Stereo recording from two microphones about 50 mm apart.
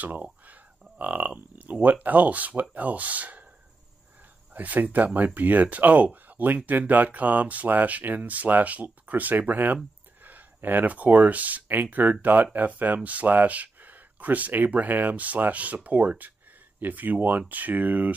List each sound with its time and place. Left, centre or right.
0.0 s speech: right
4.6 s speech: right